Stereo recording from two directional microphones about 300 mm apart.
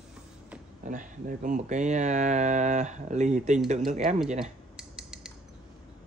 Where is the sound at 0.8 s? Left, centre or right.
Right.